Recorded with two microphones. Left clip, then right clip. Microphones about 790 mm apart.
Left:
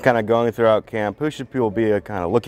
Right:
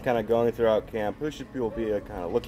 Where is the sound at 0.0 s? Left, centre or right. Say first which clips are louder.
Left 7 dB; left.